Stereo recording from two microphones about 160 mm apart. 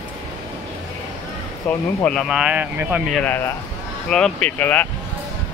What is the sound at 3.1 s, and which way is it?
Speech, 10° left (ahead or behind).